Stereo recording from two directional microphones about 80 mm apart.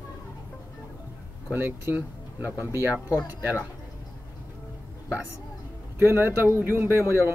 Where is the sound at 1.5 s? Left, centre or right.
Right.